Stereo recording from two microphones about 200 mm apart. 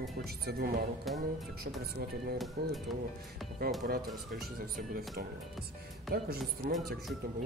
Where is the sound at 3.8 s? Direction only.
50° right (ahead or behind).